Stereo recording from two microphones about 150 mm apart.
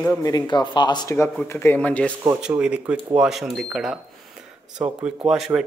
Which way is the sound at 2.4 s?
5° right (ahead or behind).